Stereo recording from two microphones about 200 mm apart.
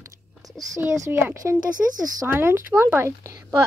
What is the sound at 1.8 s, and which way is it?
Speech, 10° right (ahead or behind).